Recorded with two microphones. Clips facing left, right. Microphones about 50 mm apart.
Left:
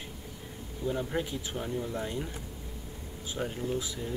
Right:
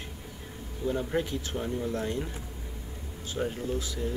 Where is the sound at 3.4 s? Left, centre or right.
Centre.